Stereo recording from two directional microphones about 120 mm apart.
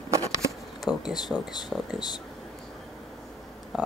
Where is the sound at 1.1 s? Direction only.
35° left (ahead or behind).